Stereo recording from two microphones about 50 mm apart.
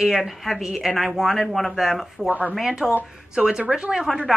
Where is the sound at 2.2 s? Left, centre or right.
Right.